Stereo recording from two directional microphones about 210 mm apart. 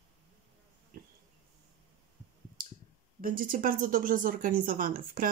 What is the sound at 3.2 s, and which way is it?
A woman's voice, 40° right (ahead or behind).